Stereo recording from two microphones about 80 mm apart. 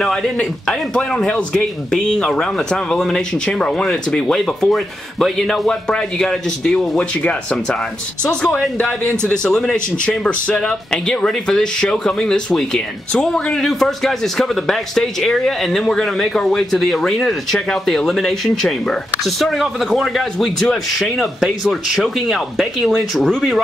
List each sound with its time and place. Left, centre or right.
0.0 s a man's voice: centre
8.3 s a man's voice: centre
9.0 s speech: right
9.3 s speech: centre